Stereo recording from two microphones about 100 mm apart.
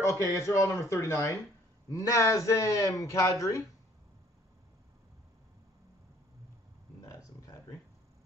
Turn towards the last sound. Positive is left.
turn(degrees=35)  # may be behind; listen again after turning